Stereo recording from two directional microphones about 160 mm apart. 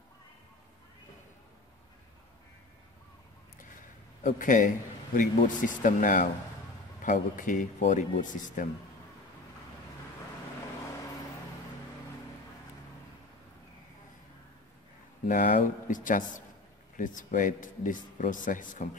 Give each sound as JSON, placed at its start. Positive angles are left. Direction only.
{"t": 4.2, "sound": "speech", "side_deg": 55}
{"t": 15.2, "sound": "speech", "side_deg": 55}